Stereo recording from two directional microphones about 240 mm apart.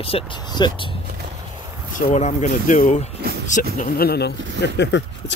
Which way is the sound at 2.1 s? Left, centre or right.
Left.